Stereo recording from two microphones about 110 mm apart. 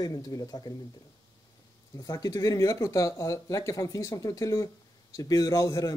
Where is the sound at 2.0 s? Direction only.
35° left (ahead or behind).